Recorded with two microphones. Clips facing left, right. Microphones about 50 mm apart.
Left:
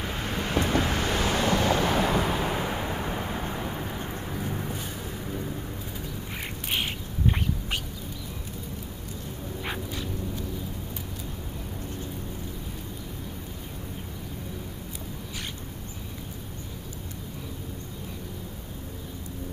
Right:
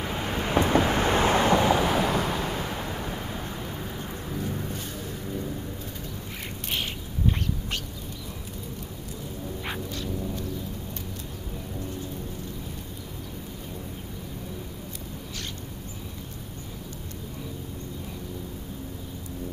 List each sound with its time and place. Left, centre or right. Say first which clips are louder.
0.0 s vehicle: right 2 dB; centre; by 1.7 s right
1.7 s vehicle: right 1 dB; centre
6.7 s bird: left 1 dB; centre
9.8 s dog: right 2 dB; centre